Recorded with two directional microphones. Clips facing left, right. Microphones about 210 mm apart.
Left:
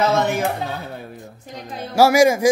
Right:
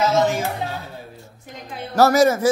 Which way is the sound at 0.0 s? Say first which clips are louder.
Even; 60° left (ahead or behind).